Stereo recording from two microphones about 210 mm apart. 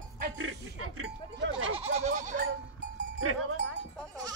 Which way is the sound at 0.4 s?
90° right.